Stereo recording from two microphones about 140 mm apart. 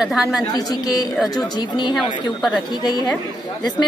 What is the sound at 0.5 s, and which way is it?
Speech, 30° left (ahead or behind).